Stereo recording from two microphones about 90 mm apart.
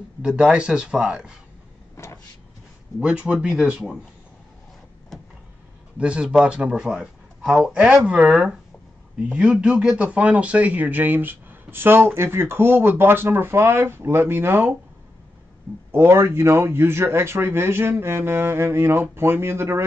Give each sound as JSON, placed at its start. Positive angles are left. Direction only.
{"t": 0.2, "sound": "speech", "side_deg": -10}
{"t": 2.0, "sound": "vehicle", "side_deg": 30}
{"t": 3.0, "sound": "speech", "side_deg": -10}
{"t": 5.9, "sound": "speech", "side_deg": -10}
{"t": 15.9, "sound": "speech", "side_deg": -30}